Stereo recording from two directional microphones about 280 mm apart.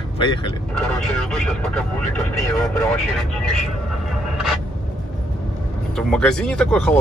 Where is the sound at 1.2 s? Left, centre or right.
Centre.